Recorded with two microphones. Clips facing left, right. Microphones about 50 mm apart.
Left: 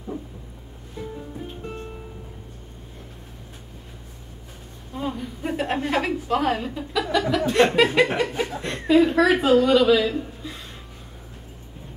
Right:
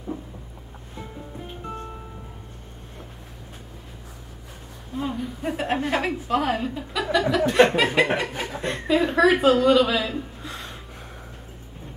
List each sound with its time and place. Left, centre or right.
4.9 s a woman's voice: centre
8.8 s a woman's voice: centre